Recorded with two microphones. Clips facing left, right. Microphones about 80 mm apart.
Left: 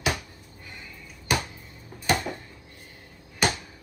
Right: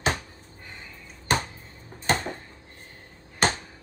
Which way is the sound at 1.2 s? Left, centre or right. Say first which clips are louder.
Right 2 dB; right.